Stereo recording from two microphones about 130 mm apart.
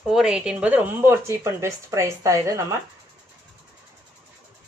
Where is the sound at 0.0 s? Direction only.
5° right (ahead or behind); by 2.6 s 25° right (ahead or behind).